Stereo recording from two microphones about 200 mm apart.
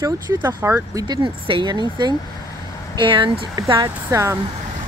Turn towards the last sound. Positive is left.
turn(degrees=-15)  # may be behind; listen again after turning